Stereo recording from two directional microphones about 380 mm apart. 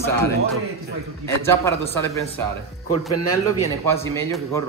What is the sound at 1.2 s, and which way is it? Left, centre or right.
A man's voice, centre.